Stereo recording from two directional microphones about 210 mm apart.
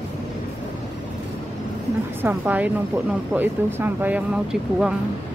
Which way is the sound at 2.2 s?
10° right (ahead or behind).